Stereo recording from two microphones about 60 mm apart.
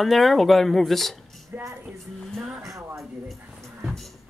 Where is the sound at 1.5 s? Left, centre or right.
Right.